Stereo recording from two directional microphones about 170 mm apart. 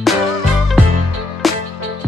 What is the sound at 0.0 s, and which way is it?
Music, centre (ahead or behind).